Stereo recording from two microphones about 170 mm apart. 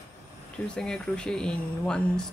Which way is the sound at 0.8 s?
5° left (ahead or behind).